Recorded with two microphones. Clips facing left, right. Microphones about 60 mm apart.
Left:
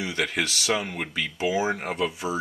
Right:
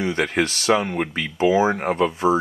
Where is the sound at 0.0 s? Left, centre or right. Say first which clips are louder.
Right 6 dB; right.